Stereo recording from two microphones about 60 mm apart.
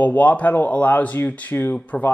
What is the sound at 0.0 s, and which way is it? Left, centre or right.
Speech, left.